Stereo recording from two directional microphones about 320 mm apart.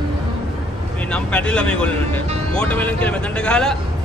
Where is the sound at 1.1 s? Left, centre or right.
Centre.